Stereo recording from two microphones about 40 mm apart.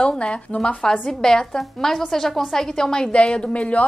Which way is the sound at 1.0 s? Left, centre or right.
Centre.